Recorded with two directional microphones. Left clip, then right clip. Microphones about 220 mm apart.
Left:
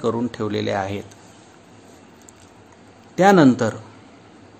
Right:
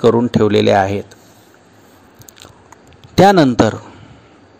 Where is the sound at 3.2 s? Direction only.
40° right (ahead or behind).